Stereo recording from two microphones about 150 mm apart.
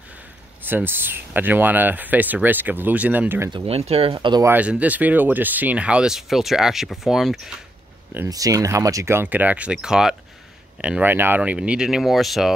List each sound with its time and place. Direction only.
0.6 s speech: 15° right (ahead or behind)
3.5 s speech: 40° right (ahead or behind)
4.4 s speech: 10° right (ahead or behind)
8.1 s speech: 20° right (ahead or behind); by 12.5 s centre (ahead or behind)